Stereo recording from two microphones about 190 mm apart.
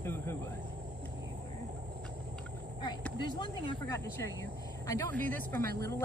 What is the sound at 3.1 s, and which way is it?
Speech, 25° left (ahead or behind).